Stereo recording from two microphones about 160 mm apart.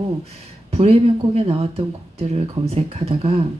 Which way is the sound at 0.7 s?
40° right (ahead or behind).